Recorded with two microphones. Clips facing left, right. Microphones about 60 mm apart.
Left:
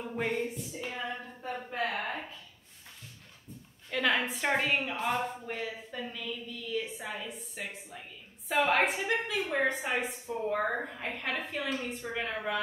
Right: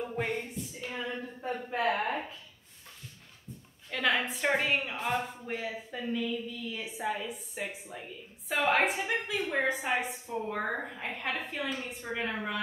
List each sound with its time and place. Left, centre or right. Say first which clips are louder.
0.1 s a woman's voice: left 1 dB; centre
1.8 s a woman's voice: right 4 dB; centre
3.9 s a woman's voice: even; centre